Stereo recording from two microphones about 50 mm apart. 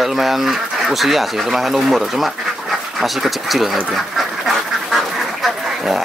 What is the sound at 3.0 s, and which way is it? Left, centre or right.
Duck, centre.